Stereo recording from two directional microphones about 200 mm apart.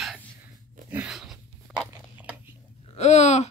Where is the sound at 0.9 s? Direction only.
5° right (ahead or behind).